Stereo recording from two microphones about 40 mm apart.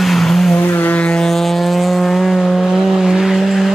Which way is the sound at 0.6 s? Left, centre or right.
Left.